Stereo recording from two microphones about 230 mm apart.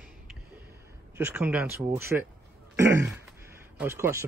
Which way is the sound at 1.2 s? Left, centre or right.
Centre.